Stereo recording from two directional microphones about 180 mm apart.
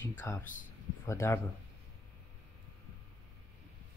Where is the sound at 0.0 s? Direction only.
10° left (ahead or behind).